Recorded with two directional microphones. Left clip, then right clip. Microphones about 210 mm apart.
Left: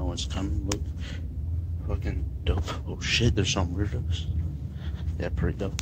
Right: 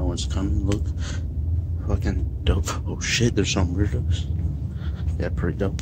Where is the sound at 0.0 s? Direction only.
15° right (ahead or behind).